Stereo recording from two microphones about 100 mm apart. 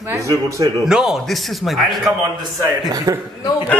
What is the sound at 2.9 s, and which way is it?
Speech, 40° right (ahead or behind).